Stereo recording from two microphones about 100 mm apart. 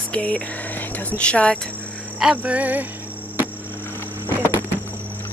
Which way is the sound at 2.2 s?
10° right (ahead or behind).